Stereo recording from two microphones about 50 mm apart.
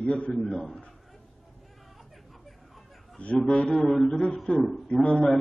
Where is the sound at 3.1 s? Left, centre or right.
Left.